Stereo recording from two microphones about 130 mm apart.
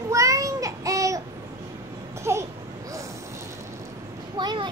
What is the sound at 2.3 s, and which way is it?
Speech, 20° right (ahead or behind).